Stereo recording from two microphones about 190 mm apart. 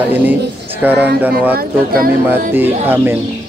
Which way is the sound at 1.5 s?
50° right (ahead or behind).